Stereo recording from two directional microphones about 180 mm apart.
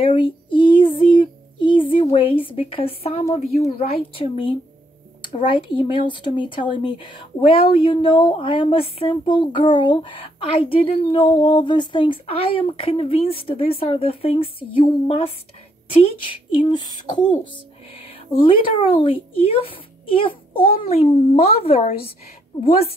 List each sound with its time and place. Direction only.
0.0 s child singing: 30° left (ahead or behind)
3.3 s a child's voice: 35° left (ahead or behind)
17.9 s a sound: 30° left (ahead or behind)
18.9 s a child's voice: 30° left (ahead or behind)